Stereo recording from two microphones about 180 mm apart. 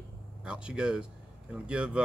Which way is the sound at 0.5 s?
5° right (ahead or behind).